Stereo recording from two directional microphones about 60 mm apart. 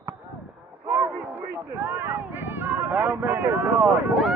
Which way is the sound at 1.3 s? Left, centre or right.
Right.